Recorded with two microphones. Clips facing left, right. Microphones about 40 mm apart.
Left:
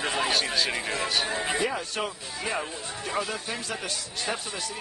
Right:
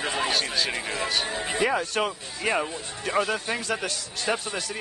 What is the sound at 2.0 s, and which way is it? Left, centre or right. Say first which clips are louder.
Speech: right 4 dB; right.